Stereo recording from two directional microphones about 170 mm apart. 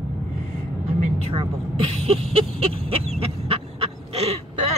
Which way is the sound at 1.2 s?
30° right (ahead or behind).